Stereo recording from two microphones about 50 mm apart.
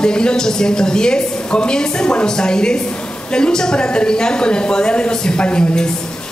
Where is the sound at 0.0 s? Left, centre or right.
Centre.